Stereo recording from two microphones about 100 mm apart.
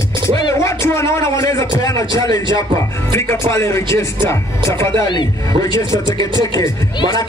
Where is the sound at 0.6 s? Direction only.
25° left (ahead or behind).